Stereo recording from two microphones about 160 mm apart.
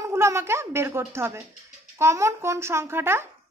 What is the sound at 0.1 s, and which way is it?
Speech, 15° right (ahead or behind).